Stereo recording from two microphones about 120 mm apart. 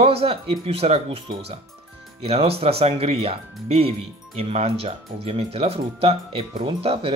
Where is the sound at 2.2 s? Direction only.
55° right (ahead or behind).